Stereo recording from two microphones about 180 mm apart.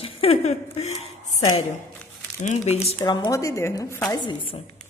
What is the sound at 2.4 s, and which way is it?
Speech, 35° left (ahead or behind).